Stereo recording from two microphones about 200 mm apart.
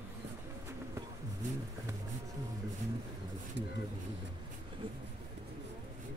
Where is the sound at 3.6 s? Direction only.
60° right (ahead or behind).